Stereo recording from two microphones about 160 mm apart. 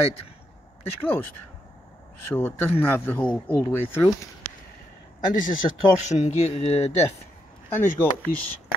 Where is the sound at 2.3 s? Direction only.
15° left (ahead or behind).